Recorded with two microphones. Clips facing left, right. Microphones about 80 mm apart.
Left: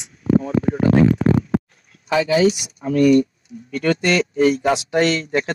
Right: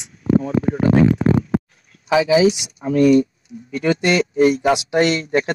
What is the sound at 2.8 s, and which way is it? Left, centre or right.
Speech, centre.